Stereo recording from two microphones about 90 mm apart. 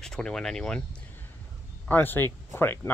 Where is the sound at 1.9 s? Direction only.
25° left (ahead or behind).